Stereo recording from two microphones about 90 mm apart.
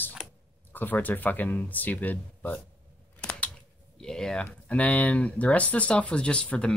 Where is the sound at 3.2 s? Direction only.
15° left (ahead or behind).